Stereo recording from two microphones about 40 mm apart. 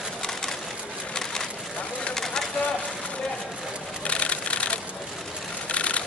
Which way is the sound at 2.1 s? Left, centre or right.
Centre.